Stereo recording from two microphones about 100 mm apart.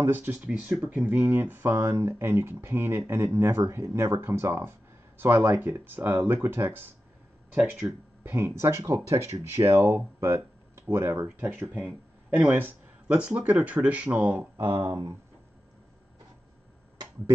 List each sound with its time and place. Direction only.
0.0 s speech: 20° right (ahead or behind)
0.5 s speech: 10° right (ahead or behind)
7.5 s speech: 5° right (ahead or behind)
8.2 s speech: 20° right (ahead or behind)
14.6 s speech: 50° right (ahead or behind)